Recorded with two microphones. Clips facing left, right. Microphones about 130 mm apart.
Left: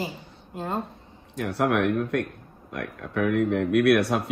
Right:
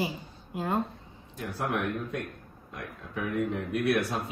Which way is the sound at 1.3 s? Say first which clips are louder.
Left 8 dB; 70° left (ahead or behind).